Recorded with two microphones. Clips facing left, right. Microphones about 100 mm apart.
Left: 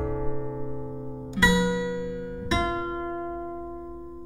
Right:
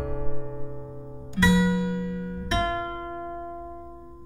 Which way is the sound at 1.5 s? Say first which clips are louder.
Right 2 dB; 25° left (ahead or behind).